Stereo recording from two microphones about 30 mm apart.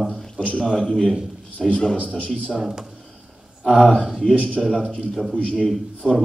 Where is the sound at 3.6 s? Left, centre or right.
Right.